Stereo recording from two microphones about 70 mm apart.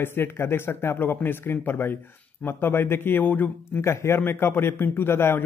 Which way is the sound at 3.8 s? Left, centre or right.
Left.